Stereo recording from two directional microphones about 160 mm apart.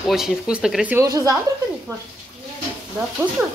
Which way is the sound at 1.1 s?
25° right (ahead or behind).